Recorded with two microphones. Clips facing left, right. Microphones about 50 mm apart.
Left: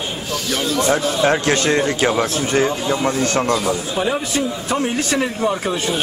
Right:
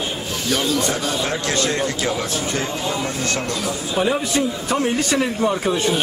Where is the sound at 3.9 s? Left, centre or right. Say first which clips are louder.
Right 1 dB; centre.